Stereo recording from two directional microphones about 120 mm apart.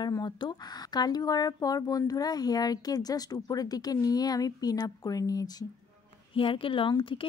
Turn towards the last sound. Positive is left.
turn(degrees=45)  # may be behind; listen again after turning